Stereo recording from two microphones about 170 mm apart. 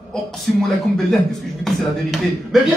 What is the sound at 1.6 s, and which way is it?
A man's voice, centre (ahead or behind).